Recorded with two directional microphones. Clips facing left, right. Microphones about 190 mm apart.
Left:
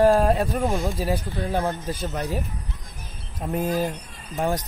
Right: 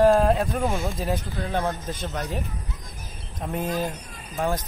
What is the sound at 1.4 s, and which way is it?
Speech, 15° left (ahead or behind).